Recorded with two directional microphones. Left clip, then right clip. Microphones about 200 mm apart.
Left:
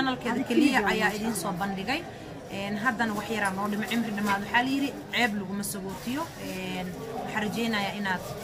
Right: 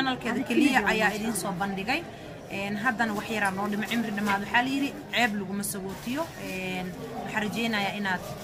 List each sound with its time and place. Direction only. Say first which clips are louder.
0.0 s a woman's voice: even; 20° right (ahead or behind)
7.3 s a woman's voice: right 1 dB; 20° right (ahead or behind)